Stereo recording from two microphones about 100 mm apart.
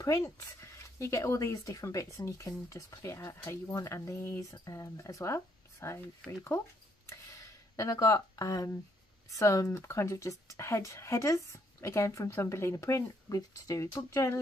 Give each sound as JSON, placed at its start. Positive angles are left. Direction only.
{"t": 0.0, "sound": "speech", "side_deg": 30}
{"t": 7.1, "sound": "a sound", "side_deg": 30}
{"t": 9.3, "sound": "speech", "side_deg": 35}